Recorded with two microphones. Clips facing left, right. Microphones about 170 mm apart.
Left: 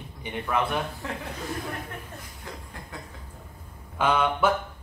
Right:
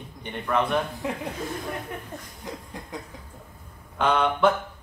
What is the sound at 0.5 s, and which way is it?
Speech, 10° left (ahead or behind).